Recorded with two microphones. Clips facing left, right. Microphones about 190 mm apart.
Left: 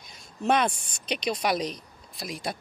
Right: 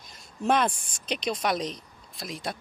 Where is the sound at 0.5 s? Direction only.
5° left (ahead or behind).